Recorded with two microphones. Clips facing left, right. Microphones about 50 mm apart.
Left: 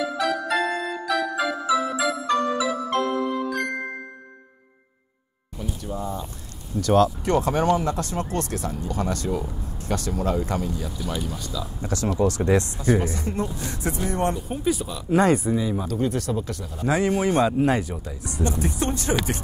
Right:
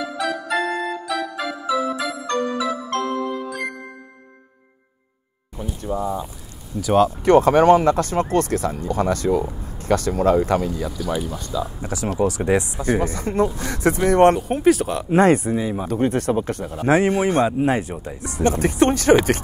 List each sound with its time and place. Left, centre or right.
0.0 s music: centre
5.6 s a sound: right
6.8 s speech: centre
7.1 s speech: right
10.2 s speech: right
11.2 s speech: right
11.8 s speech: centre
13.0 s speech: right
13.6 s speech: right
15.1 s speech: right
15.5 s speech: right
17.5 s speech: centre
17.7 s speech: right
18.2 s speech: right